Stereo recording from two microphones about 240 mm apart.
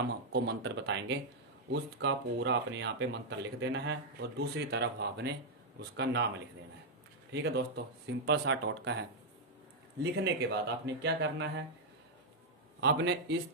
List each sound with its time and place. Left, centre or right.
0.3 s speech: right
7.3 s speech: right
10.2 s speech: right
12.8 s speech: right